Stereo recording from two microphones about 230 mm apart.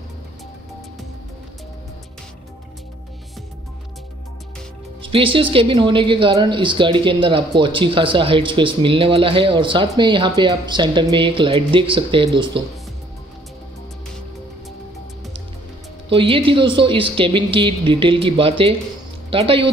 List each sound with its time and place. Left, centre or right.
5.0 s speech: right
16.1 s speech: right